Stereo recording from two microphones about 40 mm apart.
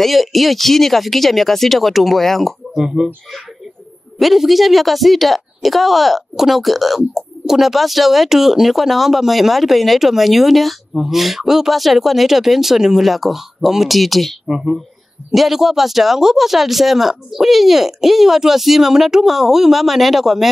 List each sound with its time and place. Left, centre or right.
0.0 s speech: centre
2.7 s speech: centre
4.2 s speech: centre
14.5 s speech: centre